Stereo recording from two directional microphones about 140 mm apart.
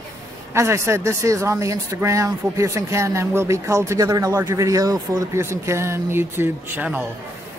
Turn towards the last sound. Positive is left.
turn(degrees=-10)  # may be behind; listen again after turning